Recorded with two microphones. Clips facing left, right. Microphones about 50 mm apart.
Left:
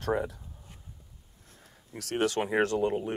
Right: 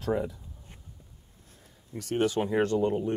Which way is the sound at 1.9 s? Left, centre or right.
Left.